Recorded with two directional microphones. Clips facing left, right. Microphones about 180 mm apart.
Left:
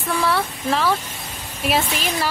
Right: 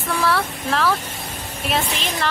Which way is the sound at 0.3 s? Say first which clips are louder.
Even; centre (ahead or behind).